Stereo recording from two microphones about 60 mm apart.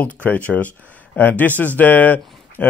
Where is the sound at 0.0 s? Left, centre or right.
Left.